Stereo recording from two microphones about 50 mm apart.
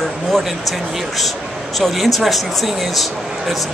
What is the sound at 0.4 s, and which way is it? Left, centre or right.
Speech, centre.